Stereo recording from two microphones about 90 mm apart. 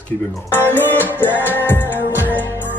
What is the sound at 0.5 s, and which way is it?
Speech, 25° left (ahead or behind).